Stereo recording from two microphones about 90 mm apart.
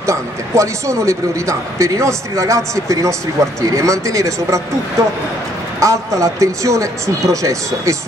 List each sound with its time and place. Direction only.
0.0 s speech: 35° right (ahead or behind)
5.8 s speech: 35° right (ahead or behind)